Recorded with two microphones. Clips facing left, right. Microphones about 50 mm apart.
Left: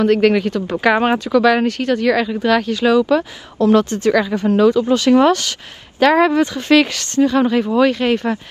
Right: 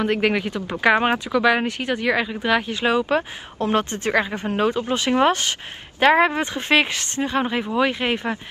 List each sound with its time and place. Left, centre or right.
0.0 s a woman's voice: centre